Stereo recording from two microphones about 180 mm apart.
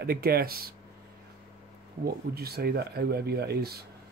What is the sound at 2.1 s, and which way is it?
Speech, 60° right (ahead or behind).